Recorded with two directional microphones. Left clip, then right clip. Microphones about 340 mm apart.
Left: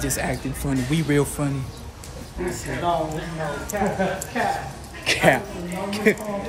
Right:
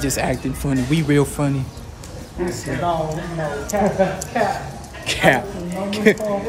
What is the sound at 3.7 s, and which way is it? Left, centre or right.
Speech, right.